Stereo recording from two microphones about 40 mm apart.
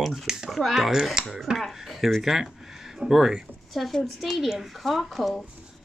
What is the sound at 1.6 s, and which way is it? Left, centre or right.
Speech, centre.